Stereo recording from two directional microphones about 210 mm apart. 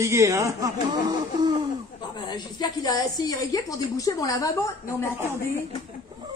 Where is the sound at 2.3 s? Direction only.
20° left (ahead or behind).